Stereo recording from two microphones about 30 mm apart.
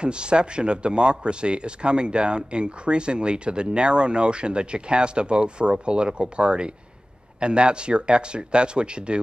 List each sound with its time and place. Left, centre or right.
0.0 s speech: right